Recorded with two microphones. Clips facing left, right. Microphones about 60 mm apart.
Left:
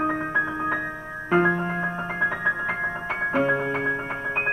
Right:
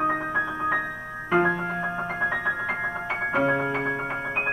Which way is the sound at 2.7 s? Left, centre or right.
Left.